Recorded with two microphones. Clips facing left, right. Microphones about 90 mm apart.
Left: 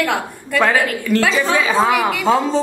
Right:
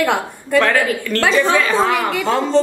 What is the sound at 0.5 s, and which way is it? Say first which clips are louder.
Dog: right 1 dB; 10° left (ahead or behind).